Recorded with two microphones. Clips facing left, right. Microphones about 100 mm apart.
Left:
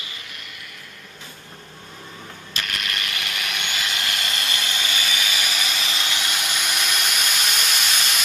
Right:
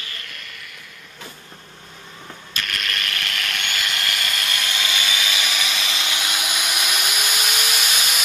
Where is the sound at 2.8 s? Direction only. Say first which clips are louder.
Right 1 dB; 10° left (ahead or behind).